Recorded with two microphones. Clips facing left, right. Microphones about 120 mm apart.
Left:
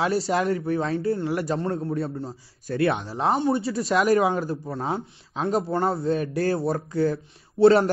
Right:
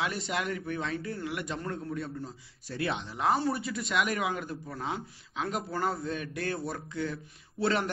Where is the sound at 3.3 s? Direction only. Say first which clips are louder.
Left 7 dB; 20° left (ahead or behind).